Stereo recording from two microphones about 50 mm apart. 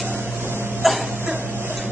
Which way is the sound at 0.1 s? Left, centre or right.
Right.